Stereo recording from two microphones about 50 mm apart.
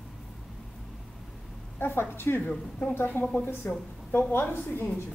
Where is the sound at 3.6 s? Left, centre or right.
Left.